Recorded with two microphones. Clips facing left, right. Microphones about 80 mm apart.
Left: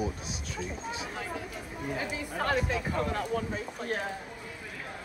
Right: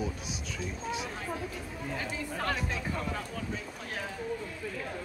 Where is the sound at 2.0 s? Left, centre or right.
Left.